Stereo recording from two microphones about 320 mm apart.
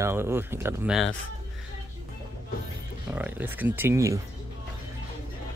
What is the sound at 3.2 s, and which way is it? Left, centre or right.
Speech, centre.